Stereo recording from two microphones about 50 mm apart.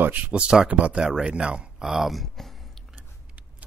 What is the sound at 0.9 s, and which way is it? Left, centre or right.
Speech, centre.